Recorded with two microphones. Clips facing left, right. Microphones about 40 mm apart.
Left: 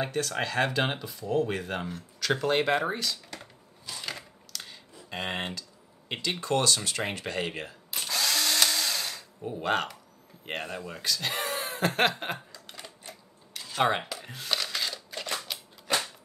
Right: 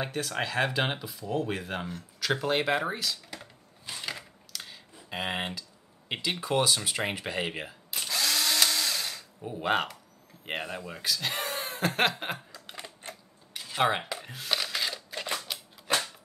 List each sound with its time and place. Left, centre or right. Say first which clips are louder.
0.0 s speech: left 2 dB; centre
4.0 s a sound: even; centre
5.1 s speech: right 1 dB; centre
7.9 s drill: even; centre
9.6 s speech: right 1 dB; centre
12.5 s typing: right 2 dB; centre
13.5 s a sound: left 1 dB; centre
13.8 s speech: even; centre
14.2 s a sound: even; centre